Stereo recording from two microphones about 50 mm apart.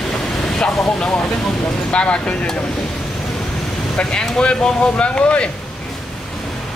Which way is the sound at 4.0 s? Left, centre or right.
Centre.